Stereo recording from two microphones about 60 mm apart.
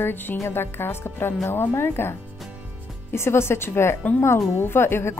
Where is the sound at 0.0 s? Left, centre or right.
Left.